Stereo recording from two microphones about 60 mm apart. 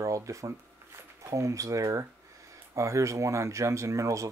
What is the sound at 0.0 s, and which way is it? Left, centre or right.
Speech, right.